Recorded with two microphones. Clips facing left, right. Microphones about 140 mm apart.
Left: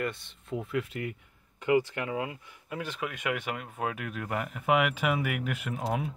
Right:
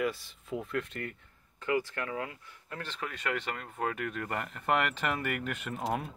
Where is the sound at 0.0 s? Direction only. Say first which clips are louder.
Right 1 dB; centre (ahead or behind).